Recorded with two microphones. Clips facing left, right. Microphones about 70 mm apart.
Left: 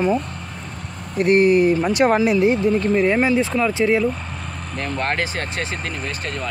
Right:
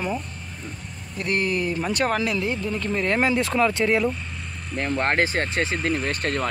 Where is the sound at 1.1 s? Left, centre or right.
Left.